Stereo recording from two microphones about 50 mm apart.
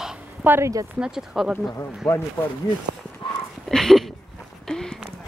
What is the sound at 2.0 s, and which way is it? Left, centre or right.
Speech, left.